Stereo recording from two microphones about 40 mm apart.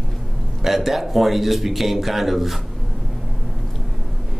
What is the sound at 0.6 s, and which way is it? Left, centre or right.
Speech, centre.